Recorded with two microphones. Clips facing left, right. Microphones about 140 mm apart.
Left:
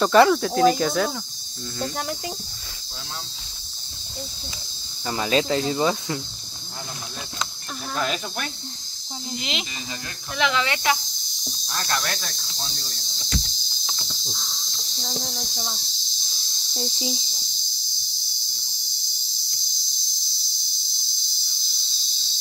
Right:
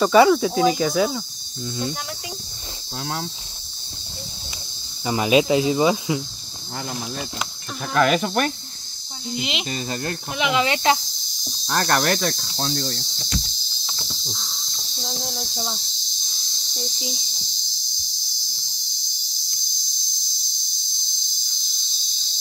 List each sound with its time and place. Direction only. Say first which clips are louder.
0.0 s speech: right 2 dB; centre (ahead or behind)
5.0 s speech: right 5 dB; 15° right (ahead or behind)
7.9 s cricket: right 9 dB; 70° right (ahead or behind)
9.4 s speech: right 4 dB; 5° right (ahead or behind)
9.7 s cricket: right 9 dB; 50° right (ahead or behind)
10.3 s speech: right 2 dB; 15° right (ahead or behind)
11.6 s cricket: right 8 dB; 90° right; by 13.0 s 75° right (ahead or behind)
14.2 s cricket: right 1 dB; centre (ahead or behind)
16.7 s speech: left 3 dB; 25° left (ahead or behind)